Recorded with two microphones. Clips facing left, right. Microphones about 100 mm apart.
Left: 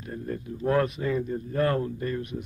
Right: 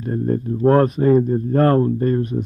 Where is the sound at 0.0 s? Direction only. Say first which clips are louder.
Right 13 dB; 40° right (ahead or behind).